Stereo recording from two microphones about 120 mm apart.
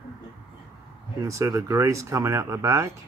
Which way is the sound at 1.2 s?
25° right (ahead or behind).